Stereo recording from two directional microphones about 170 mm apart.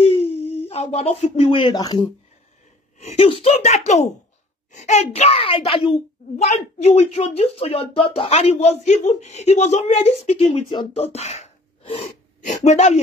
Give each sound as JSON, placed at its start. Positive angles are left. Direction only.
{"t": 0.0, "sound": "a sound", "side_deg": 35}
{"t": 1.1, "sound": "speech", "side_deg": 35}
{"t": 3.0, "sound": "speech", "side_deg": 35}
{"t": 6.3, "sound": "speech", "side_deg": 40}
{"t": 11.1, "sound": "a sound", "side_deg": 40}
{"t": 12.4, "sound": "speech", "side_deg": 45}